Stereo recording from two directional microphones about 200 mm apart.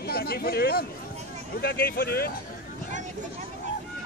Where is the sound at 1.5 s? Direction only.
50° left (ahead or behind).